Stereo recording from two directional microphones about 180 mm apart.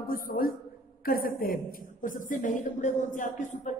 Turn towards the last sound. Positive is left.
turn(degrees=45)  # may be behind; listen again after turning